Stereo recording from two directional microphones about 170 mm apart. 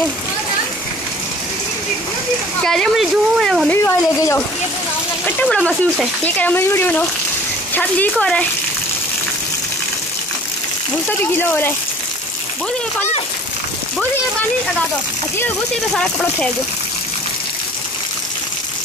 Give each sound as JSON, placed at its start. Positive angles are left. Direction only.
{"t": 2.6, "sound": "speech", "side_deg": 5}
{"t": 3.7, "sound": "speech", "side_deg": 15}
{"t": 11.1, "sound": "speech", "side_deg": 10}
{"t": 15.3, "sound": "speech", "side_deg": 5}